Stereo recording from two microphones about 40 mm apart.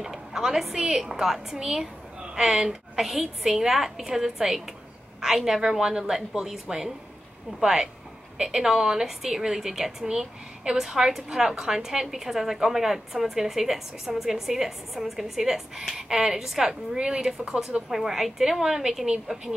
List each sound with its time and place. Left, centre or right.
0.0 s a woman's voice: centre